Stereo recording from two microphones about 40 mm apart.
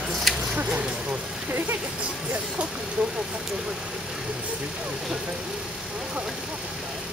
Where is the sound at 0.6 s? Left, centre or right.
Right.